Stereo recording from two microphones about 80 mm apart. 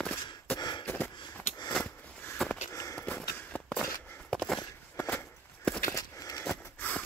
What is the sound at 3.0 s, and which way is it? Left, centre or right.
Walk, centre.